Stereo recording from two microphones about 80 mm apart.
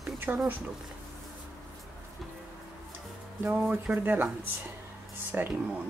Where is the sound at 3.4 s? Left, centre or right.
Right.